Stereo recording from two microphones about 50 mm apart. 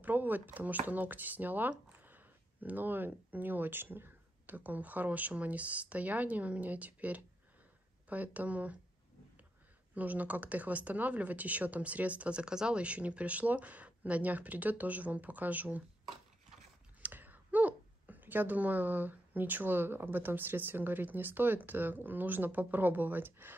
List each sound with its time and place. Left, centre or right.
0.0 s speech: right
9.9 s speech: right
17.0 s speech: right